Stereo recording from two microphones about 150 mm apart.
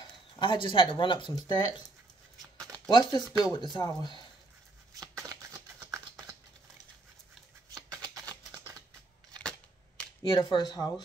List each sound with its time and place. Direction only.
0.0 s speech: 35° left (ahead or behind)
2.9 s speech: 30° left (ahead or behind)
5.0 s shuffling cards: 25° right (ahead or behind)
7.7 s shuffling cards: 25° right (ahead or behind)
9.4 s cap gun: 5° left (ahead or behind)
10.3 s speech: 30° left (ahead or behind)